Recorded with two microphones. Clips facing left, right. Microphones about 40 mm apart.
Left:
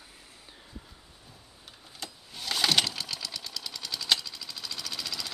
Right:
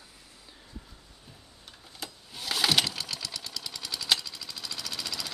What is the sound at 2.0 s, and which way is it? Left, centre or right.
Lawn mower, centre.